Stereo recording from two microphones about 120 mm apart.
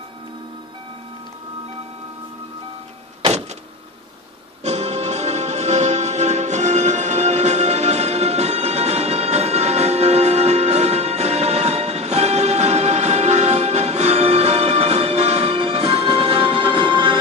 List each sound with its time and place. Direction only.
4.6 s music: 65° right (ahead or behind); by 17.2 s 40° right (ahead or behind)